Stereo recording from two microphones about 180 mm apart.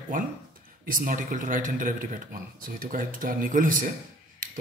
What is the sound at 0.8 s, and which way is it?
Speech, 50° right (ahead or behind).